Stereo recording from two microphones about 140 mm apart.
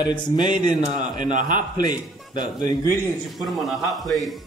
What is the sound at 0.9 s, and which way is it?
Speech, 65° right (ahead or behind).